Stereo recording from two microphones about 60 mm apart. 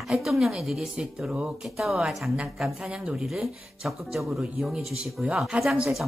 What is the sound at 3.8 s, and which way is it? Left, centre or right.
Speech, centre.